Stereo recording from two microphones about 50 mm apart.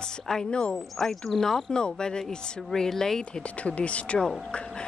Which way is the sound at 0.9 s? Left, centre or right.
Centre.